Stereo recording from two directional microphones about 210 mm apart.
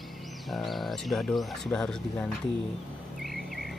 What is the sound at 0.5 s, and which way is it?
Speech, centre (ahead or behind).